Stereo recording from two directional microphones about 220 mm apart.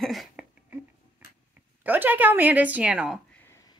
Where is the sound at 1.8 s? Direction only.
10° right (ahead or behind).